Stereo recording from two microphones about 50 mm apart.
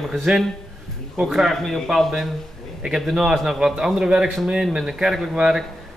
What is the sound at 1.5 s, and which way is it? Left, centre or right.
Speech, centre.